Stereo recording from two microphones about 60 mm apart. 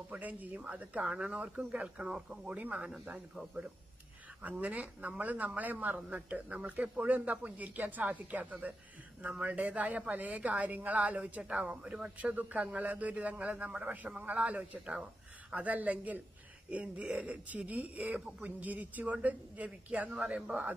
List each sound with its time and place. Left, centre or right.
0.1 s a man's voice: right
4.4 s a man's voice: right